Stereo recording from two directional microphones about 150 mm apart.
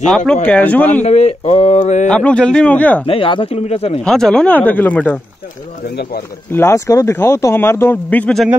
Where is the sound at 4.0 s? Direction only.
5° left (ahead or behind).